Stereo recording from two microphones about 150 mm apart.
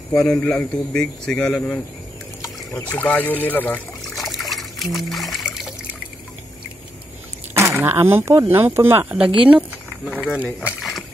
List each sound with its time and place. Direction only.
0.1 s speech: 5° left (ahead or behind)
4.2 s trickle: centre (ahead or behind)
7.5 s speech: 15° right (ahead or behind); by 11.1 s centre (ahead or behind)